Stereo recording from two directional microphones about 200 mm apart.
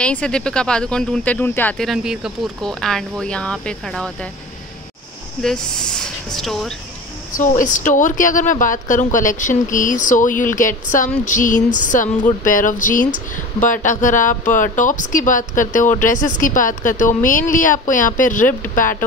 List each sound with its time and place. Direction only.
0.0 s speech: 5° left (ahead or behind)
5.4 s speech: 5° left (ahead or behind)
7.3 s speech: 40° left (ahead or behind)